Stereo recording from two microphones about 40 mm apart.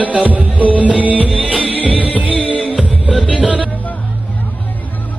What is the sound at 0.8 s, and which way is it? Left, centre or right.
Music, right.